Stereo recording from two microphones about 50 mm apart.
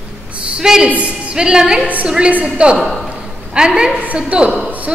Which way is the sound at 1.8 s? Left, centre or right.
Right.